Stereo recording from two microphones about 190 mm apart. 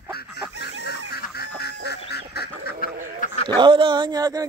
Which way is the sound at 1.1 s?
55° left (ahead or behind).